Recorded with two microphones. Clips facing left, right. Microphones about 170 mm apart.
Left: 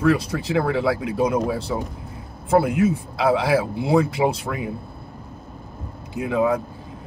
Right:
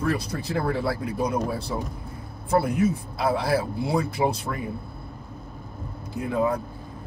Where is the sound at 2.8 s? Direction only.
75° left (ahead or behind).